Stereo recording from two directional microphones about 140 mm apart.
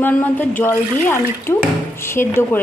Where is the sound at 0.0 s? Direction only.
10° left (ahead or behind).